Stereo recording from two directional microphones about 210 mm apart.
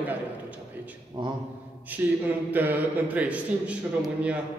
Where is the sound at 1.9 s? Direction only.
10° right (ahead or behind).